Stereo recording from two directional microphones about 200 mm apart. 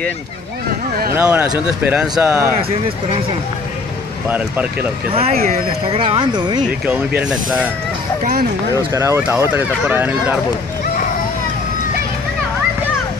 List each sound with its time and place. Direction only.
1.1 s speech: 10° right (ahead or behind)
5.1 s speech: 30° right (ahead or behind)
7.2 s speech: 5° right (ahead or behind)
8.7 s speech: 15° right (ahead or behind)